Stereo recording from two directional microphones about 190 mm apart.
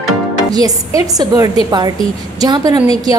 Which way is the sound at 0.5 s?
20° right (ahead or behind).